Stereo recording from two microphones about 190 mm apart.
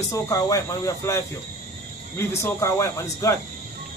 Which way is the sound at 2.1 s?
15° left (ahead or behind).